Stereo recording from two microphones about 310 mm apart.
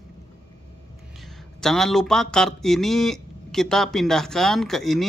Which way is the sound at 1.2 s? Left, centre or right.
Centre.